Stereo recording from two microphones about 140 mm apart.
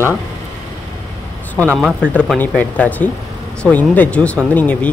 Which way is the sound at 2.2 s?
5° left (ahead or behind).